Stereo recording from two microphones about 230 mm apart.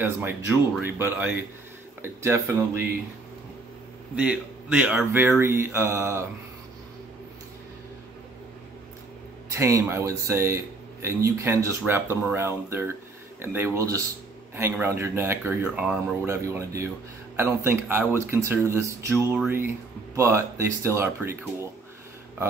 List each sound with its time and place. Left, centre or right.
0.0 s speech: centre
4.1 s speech: centre
9.6 s speech: centre